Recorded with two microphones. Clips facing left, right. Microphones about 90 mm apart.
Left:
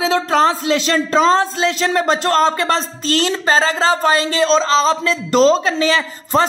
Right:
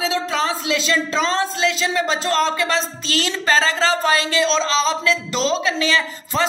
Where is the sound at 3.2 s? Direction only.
30° left (ahead or behind).